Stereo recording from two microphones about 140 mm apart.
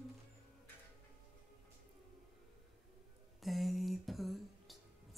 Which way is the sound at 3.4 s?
Centre (ahead or behind).